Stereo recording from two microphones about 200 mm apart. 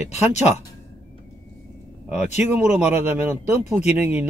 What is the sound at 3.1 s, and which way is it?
Speech, 10° right (ahead or behind).